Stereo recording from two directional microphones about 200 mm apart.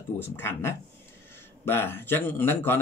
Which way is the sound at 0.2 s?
10° left (ahead or behind).